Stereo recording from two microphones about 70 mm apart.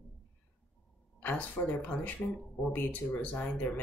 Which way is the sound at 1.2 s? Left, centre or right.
Left.